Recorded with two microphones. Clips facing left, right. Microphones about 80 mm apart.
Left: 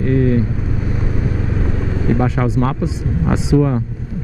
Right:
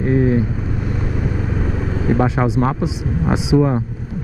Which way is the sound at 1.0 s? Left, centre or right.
Centre.